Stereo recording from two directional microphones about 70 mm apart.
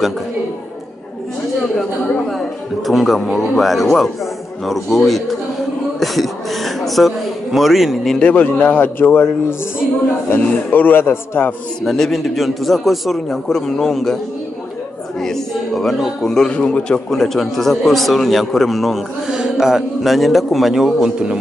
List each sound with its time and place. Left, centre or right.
2.9 s a man's voice: centre
8.2 s a man's voice: centre
10.3 s a man's voice: left
11.8 s a man's voice: centre
15.1 s a man's voice: centre